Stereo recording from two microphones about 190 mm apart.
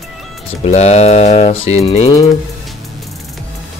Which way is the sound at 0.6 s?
35° left (ahead or behind).